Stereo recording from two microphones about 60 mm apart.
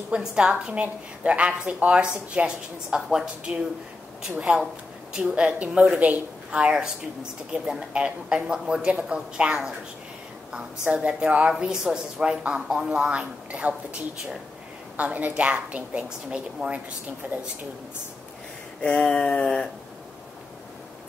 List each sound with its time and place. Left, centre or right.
0.1 s a woman's voice: centre
6.5 s a woman's voice: centre
18.8 s a sound: centre